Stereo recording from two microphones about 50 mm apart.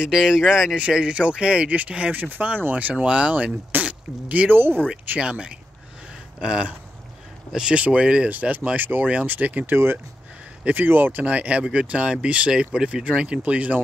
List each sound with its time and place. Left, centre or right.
0.0 s speech: centre
0.7 s speech: right
4.5 s speech: right
5.2 s speech: centre
7.7 s speech: right
8.3 s speech: right